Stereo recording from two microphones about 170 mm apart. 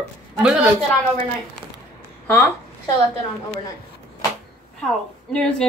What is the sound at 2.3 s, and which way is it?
Speech, 15° left (ahead or behind).